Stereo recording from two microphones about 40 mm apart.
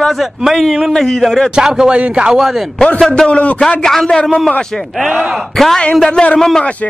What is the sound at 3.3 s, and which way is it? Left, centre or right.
Speech, left.